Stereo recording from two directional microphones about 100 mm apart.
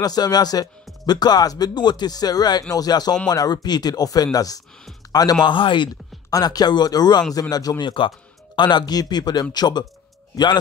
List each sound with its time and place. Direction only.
0.0 s speech: 40° left (ahead or behind)
6.3 s speech: 40° left (ahead or behind)